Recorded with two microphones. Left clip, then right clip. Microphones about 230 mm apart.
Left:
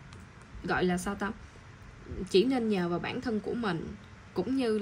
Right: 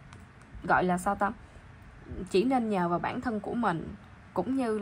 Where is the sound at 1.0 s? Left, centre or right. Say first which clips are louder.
Right 7 dB; centre.